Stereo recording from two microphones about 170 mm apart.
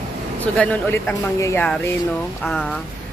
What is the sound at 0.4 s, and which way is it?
Speech, 10° left (ahead or behind).